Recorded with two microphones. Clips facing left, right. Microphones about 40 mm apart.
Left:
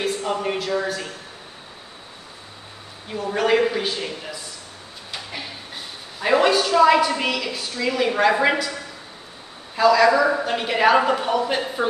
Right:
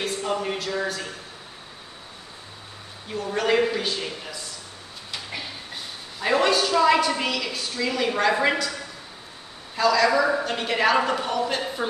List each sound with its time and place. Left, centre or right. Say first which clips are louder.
0.0 s speech: left 3 dB; centre
3.1 s a woman's voice: left 3 dB; centre
6.1 s a woman's voice: left 3 dB; centre
9.8 s a woman's voice: left 4 dB; centre